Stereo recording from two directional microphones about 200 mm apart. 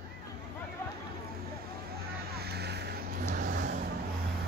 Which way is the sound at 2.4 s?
55° right (ahead or behind).